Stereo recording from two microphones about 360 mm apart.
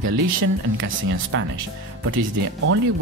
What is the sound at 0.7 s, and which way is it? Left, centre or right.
Speech, right.